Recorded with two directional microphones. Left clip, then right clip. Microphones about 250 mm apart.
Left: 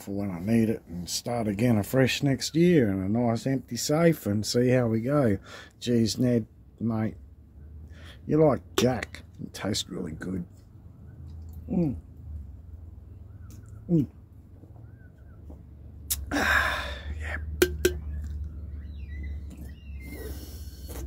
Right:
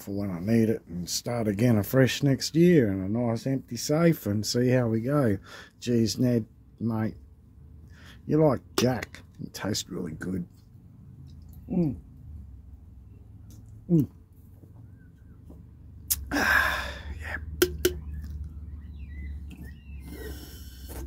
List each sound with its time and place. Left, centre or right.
0.0 s speech: centre
16.1 s gasp: centre
20.1 s a sound: centre